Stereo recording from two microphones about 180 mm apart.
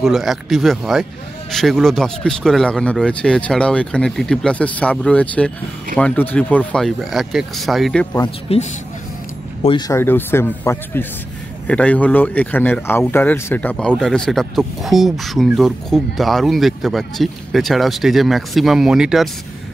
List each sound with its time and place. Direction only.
0.0 s speech: centre (ahead or behind)
8.2 s a man's voice: 35° left (ahead or behind)
9.6 s speech: 20° left (ahead or behind); by 19.2 s 5° right (ahead or behind)